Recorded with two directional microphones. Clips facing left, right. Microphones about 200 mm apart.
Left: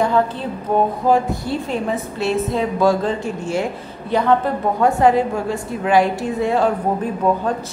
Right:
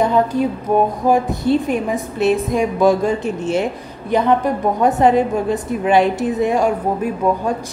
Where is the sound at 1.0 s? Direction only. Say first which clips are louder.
Right 2 dB; 20° right (ahead or behind).